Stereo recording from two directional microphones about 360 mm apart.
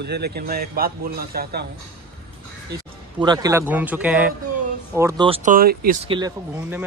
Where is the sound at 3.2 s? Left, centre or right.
Centre.